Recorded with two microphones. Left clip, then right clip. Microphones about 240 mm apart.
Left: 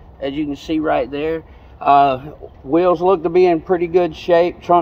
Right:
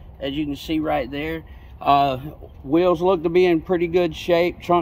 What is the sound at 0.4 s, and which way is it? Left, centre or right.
Speech, centre.